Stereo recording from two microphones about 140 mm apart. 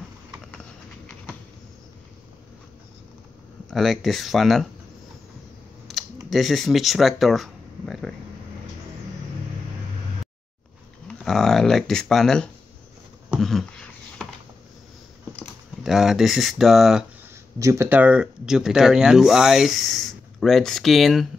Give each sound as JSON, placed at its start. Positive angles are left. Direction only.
{"t": 3.7, "sound": "speech", "side_deg": 0}
{"t": 5.9, "sound": "computer keyboard", "side_deg": 0}
{"t": 6.3, "sound": "speech", "side_deg": 0}
{"t": 11.1, "sound": "speech", "side_deg": 5}
{"t": 13.3, "sound": "a sound", "side_deg": 0}
{"t": 15.8, "sound": "speech", "side_deg": -5}
{"t": 17.6, "sound": "speech", "side_deg": -20}